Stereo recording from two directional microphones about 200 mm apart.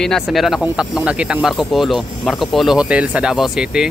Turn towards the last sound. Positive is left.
turn(degrees=-5)  # may be behind; listen again after turning